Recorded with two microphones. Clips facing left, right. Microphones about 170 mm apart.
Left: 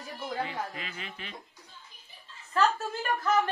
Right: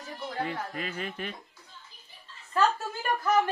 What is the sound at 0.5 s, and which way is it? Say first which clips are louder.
Speech: right 2 dB; 45° right (ahead or behind).